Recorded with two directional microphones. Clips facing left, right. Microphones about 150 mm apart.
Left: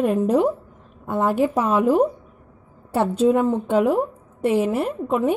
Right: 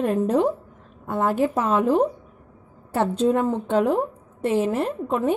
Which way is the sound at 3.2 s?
10° left (ahead or behind).